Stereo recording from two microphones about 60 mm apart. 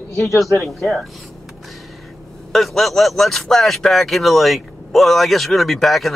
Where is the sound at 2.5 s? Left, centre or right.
Centre.